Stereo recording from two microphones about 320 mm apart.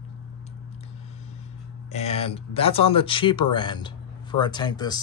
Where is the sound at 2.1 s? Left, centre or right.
Centre.